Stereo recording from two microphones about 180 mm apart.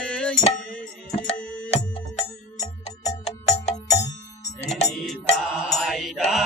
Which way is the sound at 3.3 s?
35° left (ahead or behind).